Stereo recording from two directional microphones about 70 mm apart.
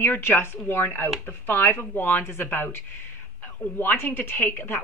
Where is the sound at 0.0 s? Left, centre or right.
Left.